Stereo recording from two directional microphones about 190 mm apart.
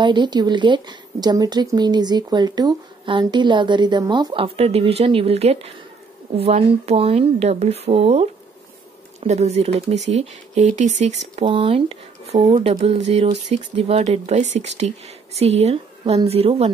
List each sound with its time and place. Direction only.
0.0 s a woman's voice: 25° right (ahead or behind)